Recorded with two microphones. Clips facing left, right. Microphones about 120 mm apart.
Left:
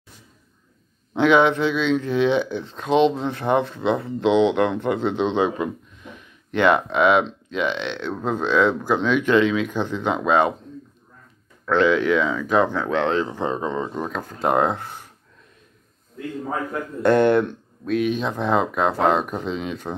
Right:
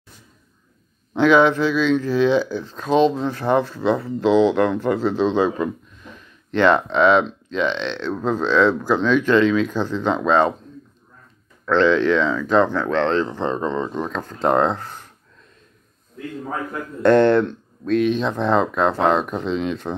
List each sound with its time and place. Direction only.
1.1 s speech: 20° left (ahead or behind)
11.6 s speech: 10° left (ahead or behind)
17.0 s speech: 15° left (ahead or behind)